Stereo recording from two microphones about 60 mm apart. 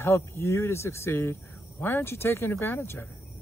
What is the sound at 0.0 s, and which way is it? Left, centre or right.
Speech, left.